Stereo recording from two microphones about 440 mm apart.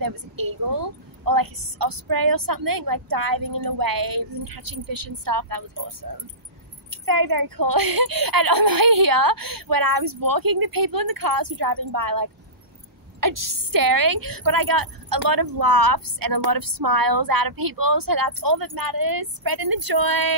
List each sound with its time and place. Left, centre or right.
0.0 s a woman's voice: right